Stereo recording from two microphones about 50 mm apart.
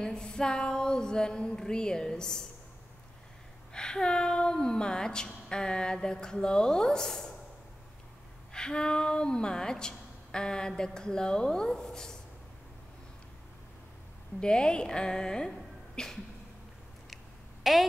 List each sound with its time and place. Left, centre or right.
0.0 s a woman's voice: centre
3.7 s a woman's voice: centre
8.5 s a woman's voice: centre
14.4 s a woman's voice: centre
17.6 s a woman's voice: centre